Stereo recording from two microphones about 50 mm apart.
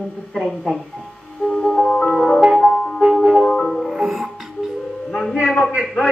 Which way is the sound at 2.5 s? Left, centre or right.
Centre.